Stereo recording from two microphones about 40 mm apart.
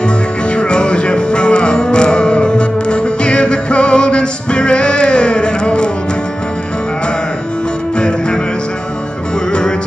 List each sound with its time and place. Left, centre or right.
0.0 s music: left
9.5 s music: centre